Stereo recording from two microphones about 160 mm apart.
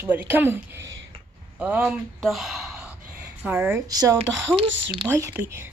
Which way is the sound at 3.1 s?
10° right (ahead or behind).